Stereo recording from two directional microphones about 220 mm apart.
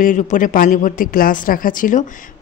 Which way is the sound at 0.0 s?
35° left (ahead or behind).